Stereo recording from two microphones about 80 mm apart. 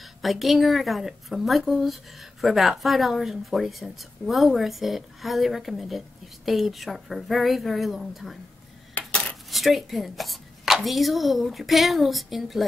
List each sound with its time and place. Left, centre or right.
0.0 s speech: centre
9.0 s coin: centre
9.5 s speech: centre